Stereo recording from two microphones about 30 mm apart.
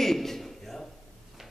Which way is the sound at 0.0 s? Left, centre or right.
Centre.